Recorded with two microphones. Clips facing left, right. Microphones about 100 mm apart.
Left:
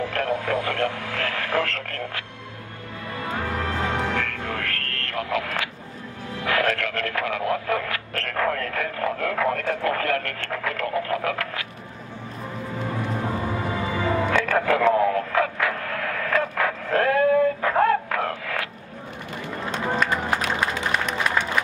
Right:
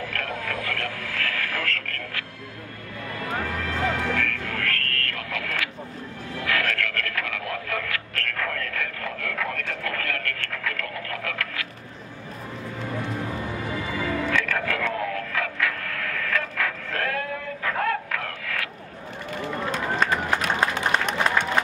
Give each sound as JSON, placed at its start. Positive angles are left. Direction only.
{"t": 0.0, "sound": "speech", "side_deg": 25}
{"t": 3.2, "sound": "music", "side_deg": 30}
{"t": 6.3, "sound": "a sound", "side_deg": 25}
{"t": 13.7, "sound": "music", "side_deg": 30}